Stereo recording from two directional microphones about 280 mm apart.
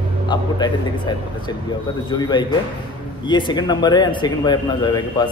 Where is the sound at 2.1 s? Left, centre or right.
Centre.